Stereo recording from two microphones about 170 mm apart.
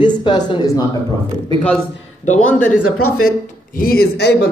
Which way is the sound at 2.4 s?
10° left (ahead or behind).